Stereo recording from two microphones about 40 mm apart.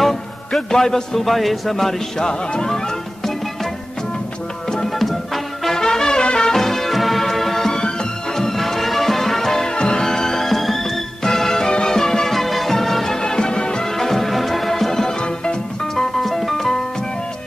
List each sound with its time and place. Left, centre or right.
0.5 s a man's voice: centre
4.8 s music: centre
5.8 s music: centre
8.5 s music: centre
9.7 s music: left
13.9 s music: centre
15.1 s music: left
16.0 s music: centre